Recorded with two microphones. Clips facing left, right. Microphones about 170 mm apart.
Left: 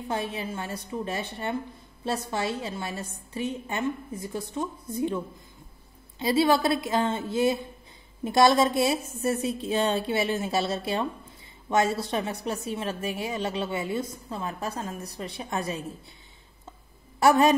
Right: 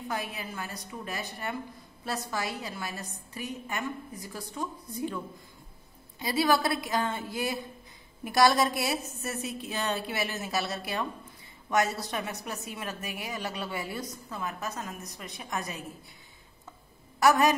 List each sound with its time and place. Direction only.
0.1 s a woman's voice: 25° left (ahead or behind)
17.2 s a woman's voice: 30° left (ahead or behind)